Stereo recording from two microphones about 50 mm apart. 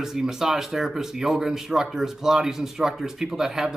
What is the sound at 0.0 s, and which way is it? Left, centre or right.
Speech, centre.